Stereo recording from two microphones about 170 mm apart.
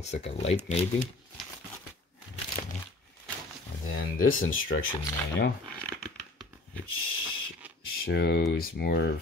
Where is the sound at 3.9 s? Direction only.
55° left (ahead or behind).